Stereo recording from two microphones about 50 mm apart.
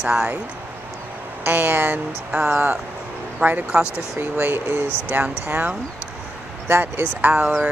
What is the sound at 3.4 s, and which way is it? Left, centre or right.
Speech, right.